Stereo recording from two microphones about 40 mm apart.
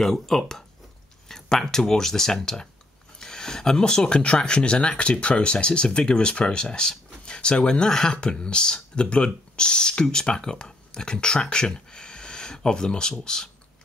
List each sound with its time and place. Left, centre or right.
0.0 s speech: centre
1.3 s a sound: centre
1.7 s speech: centre